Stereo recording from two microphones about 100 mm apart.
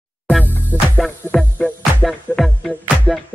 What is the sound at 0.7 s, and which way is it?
Music, 20° right (ahead or behind).